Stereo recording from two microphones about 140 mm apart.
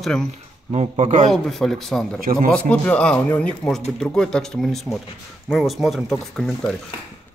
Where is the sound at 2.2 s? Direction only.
90° right.